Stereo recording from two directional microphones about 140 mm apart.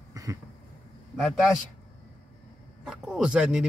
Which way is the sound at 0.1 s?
25° right (ahead or behind).